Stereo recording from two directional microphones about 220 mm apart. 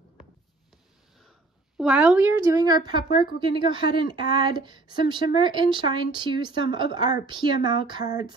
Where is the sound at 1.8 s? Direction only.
5° right (ahead or behind).